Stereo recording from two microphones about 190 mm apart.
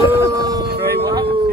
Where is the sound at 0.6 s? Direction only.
55° right (ahead or behind).